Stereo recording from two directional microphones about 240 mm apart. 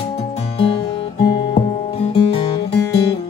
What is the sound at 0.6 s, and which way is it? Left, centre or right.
Guitar, left.